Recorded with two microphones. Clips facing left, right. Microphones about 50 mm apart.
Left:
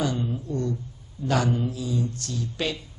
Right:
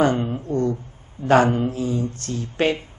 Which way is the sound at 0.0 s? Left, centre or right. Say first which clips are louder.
Right 8 dB; right.